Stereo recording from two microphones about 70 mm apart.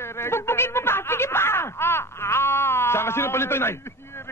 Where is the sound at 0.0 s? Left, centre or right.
Left.